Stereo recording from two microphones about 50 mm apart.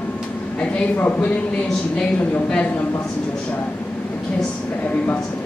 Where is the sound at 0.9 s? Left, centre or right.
Left.